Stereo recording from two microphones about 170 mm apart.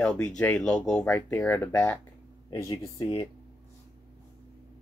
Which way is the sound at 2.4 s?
20° left (ahead or behind).